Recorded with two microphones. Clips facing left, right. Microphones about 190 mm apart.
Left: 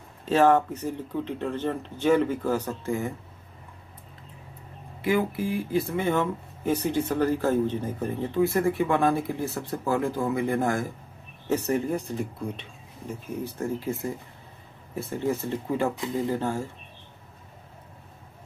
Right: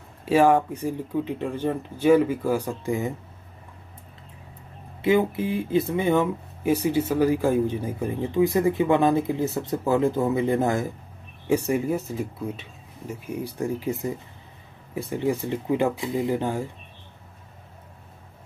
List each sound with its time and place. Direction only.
0.2 s speech: 10° right (ahead or behind)
5.0 s speech: 20° right (ahead or behind)